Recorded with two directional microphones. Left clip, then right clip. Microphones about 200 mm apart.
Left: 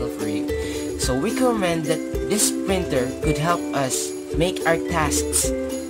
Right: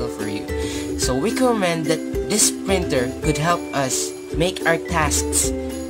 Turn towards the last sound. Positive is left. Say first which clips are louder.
# right 1 dB
turn(degrees=-5)  # may be behind; listen again after turning